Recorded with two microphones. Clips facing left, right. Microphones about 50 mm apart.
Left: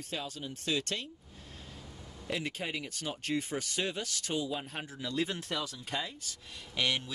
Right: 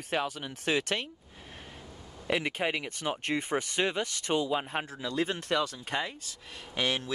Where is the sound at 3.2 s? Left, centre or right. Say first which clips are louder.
Right 2 dB; right.